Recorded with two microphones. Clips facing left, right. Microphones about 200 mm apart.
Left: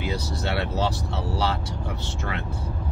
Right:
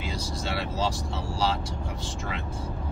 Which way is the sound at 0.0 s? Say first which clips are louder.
Left 4 dB; 65° left (ahead or behind).